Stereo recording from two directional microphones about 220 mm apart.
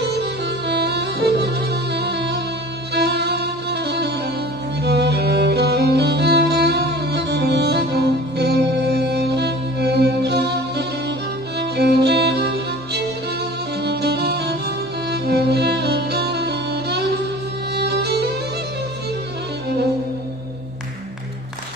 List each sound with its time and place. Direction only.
0.0 s music: 50° right (ahead or behind)
2.9 s violin: 50° right (ahead or behind)
4.8 s music: 50° right (ahead or behind)